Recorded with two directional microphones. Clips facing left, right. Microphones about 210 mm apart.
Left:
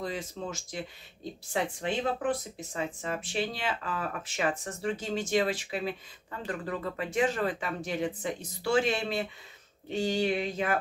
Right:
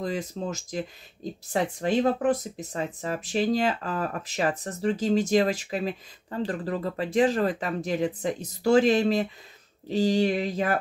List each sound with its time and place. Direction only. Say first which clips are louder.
0.0 s speech: right 5 dB; 40° right (ahead or behind)